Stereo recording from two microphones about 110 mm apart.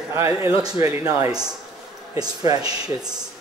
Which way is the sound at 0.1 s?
25° right (ahead or behind).